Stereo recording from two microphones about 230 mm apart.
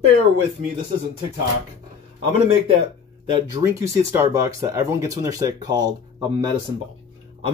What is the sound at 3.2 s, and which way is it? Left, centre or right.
Speech, centre.